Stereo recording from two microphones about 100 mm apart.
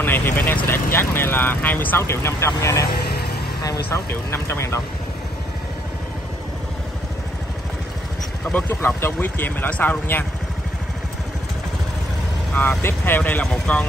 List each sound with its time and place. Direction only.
0.0 s speech: 20° left (ahead or behind)
8.5 s speech: 15° left (ahead or behind)
12.5 s speech: 20° left (ahead or behind)